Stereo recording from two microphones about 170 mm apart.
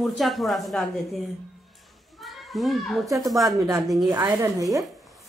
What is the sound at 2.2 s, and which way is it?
A child's voice, centre (ahead or behind).